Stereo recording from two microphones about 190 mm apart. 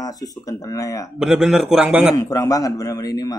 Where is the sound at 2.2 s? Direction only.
20° left (ahead or behind).